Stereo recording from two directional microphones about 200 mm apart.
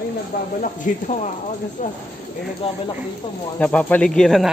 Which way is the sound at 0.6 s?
40° left (ahead or behind).